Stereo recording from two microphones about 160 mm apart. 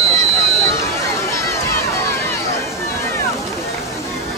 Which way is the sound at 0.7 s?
20° left (ahead or behind).